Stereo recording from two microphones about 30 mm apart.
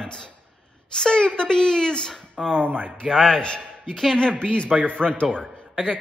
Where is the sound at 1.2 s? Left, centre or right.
Left.